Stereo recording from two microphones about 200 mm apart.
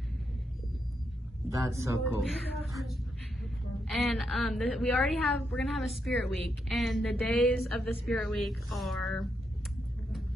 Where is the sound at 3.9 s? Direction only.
Centre (ahead or behind).